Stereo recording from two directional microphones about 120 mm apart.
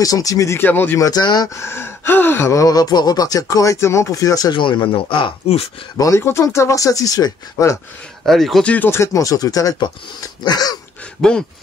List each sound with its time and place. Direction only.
0.0 s speech: 30° left (ahead or behind)
1.0 s speech: 35° left (ahead or behind)
1.6 s speech: 20° left (ahead or behind); by 5.7 s 50° left (ahead or behind)
5.9 s speech: 25° left (ahead or behind)
8.3 s speech: centre (ahead or behind)
8.7 s speech: 20° left (ahead or behind)
11.1 s speech: 5° left (ahead or behind)